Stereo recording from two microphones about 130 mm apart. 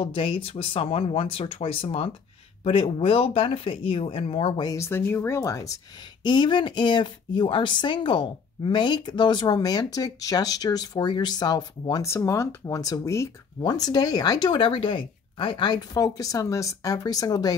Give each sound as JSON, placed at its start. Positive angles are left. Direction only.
{"t": 0.0, "sound": "speech", "side_deg": 45}
{"t": 4.6, "sound": "speech", "side_deg": 25}
{"t": 6.2, "sound": "speech", "side_deg": 35}